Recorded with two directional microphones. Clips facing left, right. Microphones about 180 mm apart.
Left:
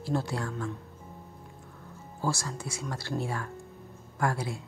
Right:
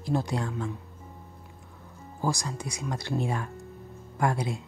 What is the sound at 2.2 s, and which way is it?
Speech, 15° right (ahead or behind).